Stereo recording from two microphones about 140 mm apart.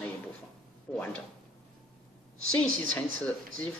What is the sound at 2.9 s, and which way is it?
Speech, 10° left (ahead or behind).